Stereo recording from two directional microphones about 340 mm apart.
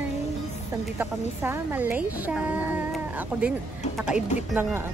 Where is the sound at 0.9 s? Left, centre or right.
Centre.